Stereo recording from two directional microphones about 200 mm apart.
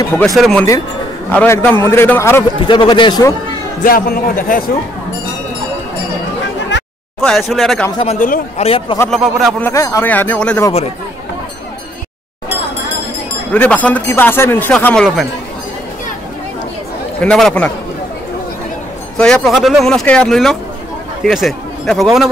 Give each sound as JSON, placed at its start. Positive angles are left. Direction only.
{"t": 0.4, "sound": "speech", "side_deg": 5}
{"t": 2.6, "sound": "speech", "side_deg": 25}
{"t": 3.8, "sound": "a man's voice", "side_deg": 45}
{"t": 7.2, "sound": "speech", "side_deg": 0}
{"t": 8.0, "sound": "a man's voice", "side_deg": 35}
{"t": 9.1, "sound": "speech", "side_deg": 0}
{"t": 9.7, "sound": "speech", "side_deg": 15}
{"t": 13.5, "sound": "speech", "side_deg": 10}
{"t": 17.2, "sound": "speech", "side_deg": 5}
{"t": 19.1, "sound": "a man's voice", "side_deg": 5}